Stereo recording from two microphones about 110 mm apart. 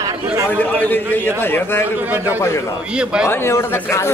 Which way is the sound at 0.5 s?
15° left (ahead or behind).